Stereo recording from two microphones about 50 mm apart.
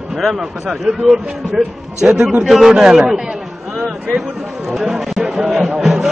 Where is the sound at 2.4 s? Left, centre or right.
Centre.